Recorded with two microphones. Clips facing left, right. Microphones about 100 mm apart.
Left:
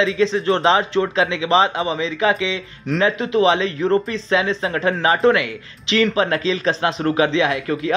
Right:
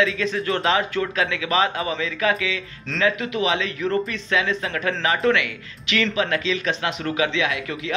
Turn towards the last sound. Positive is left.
turn(degrees=35)  # may be behind; listen again after turning